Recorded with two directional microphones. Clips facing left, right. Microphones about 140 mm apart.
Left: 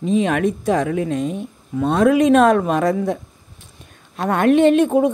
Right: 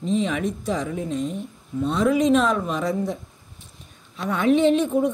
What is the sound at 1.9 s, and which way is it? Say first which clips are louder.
A man's voice: left 5 dB; 60° left (ahead or behind).